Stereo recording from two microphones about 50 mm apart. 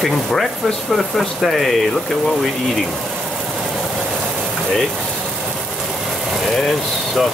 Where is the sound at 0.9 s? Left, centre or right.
Centre.